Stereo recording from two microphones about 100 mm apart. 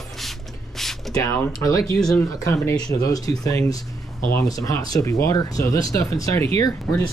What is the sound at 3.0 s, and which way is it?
Speech, 35° left (ahead or behind).